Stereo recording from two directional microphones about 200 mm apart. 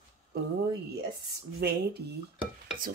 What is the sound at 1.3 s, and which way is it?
Speech, 55° right (ahead or behind).